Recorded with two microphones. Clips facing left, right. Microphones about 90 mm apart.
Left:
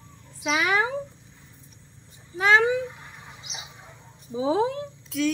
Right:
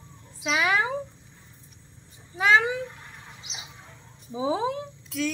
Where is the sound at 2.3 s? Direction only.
5° left (ahead or behind).